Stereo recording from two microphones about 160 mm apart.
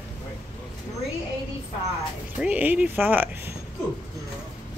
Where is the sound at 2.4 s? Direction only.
10° right (ahead or behind).